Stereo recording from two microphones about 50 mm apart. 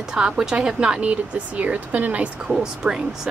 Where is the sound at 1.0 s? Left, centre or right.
Right.